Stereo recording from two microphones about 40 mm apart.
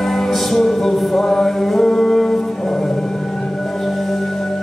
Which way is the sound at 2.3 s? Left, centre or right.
Centre.